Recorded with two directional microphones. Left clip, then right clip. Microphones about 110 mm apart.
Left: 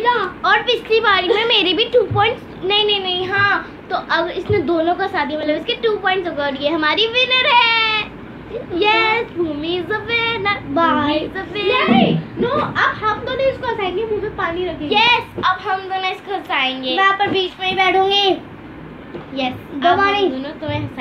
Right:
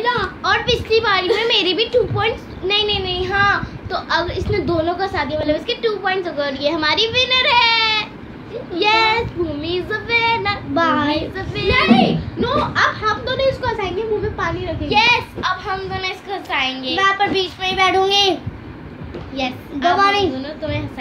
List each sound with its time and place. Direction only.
0.0 s a sound: 15° right (ahead or behind)
0.4 s a woman's voice: 10° left (ahead or behind)
10.7 s a child's voice: 20° right (ahead or behind)
11.1 s a woman's voice: 5° left (ahead or behind)
11.7 s a child's voice: 35° right (ahead or behind)
14.9 s a woman's voice: 10° left (ahead or behind)
15.6 s a woman's voice: 20° left (ahead or behind)
17.0 s a child's voice: 20° right (ahead or behind)
19.3 s a woman's voice: 10° left (ahead or behind)
20.0 s a child's voice: 25° right (ahead or behind)
20.3 s a woman's voice: 10° left (ahead or behind)